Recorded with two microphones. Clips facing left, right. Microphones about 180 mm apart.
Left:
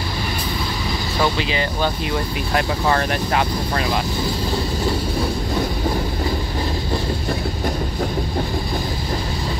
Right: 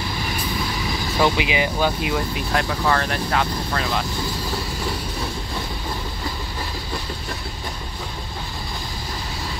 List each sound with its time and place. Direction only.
1.2 s speech: 10° right (ahead or behind)
2.8 s speech: 15° left (ahead or behind)